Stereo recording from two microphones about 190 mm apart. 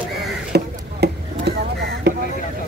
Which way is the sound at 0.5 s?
60° right (ahead or behind).